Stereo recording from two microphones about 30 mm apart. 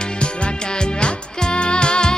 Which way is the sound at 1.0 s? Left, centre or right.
Left.